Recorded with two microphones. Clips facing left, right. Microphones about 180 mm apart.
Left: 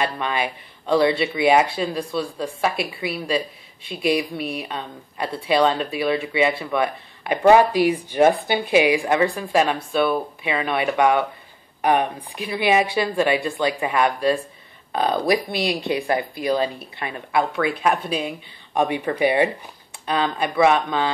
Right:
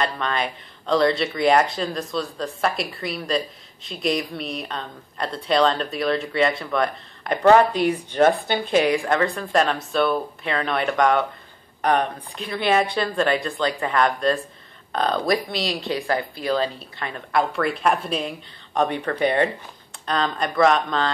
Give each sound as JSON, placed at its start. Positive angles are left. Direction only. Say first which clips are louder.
{"t": 0.0, "sound": "a woman's voice", "louder": "left 1 dB", "side_deg": 5}